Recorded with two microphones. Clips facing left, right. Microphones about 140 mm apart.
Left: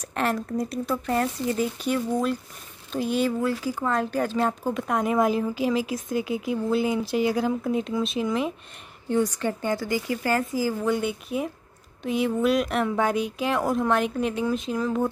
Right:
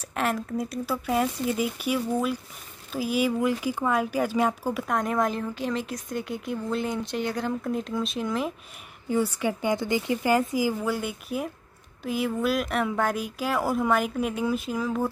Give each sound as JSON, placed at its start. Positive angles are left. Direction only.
{"t": 0.1, "sound": "speech", "side_deg": 0}
{"t": 4.8, "sound": "speech", "side_deg": 5}
{"t": 9.4, "sound": "speech", "side_deg": -10}
{"t": 10.9, "sound": "speech", "side_deg": 0}